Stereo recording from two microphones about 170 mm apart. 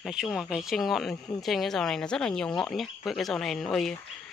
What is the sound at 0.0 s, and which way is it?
Speech, 5° right (ahead or behind).